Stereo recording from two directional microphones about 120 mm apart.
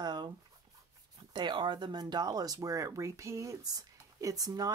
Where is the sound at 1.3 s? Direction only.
40° right (ahead or behind).